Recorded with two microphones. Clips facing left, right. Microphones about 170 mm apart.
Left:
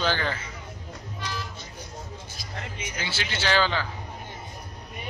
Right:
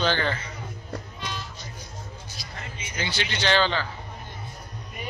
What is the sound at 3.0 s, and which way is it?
Speech, 5° left (ahead or behind).